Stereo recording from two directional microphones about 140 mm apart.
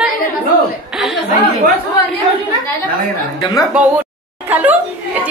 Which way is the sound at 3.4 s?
25° left (ahead or behind).